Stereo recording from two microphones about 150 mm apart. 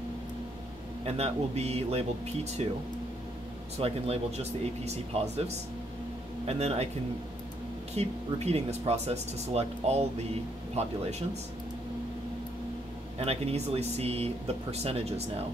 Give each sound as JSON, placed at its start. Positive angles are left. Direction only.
{"t": 1.0, "sound": "speech", "side_deg": -45}
{"t": 3.7, "sound": "speech", "side_deg": -45}
{"t": 7.9, "sound": "speech", "side_deg": -45}
{"t": 13.2, "sound": "speech", "side_deg": -40}